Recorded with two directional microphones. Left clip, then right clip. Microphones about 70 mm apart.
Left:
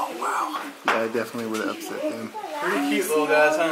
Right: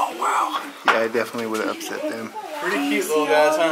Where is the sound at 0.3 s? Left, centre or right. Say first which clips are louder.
Right 5 dB; centre.